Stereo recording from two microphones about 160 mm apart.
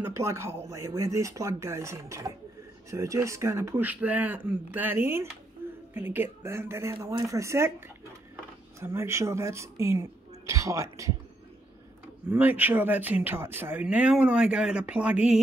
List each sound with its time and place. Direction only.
0.0 s speech: 15° right (ahead or behind)
5.6 s a sound: 15° right (ahead or behind)
5.9 s speech: 10° right (ahead or behind)
8.7 s speech: 15° right (ahead or behind)
12.3 s speech: 10° right (ahead or behind)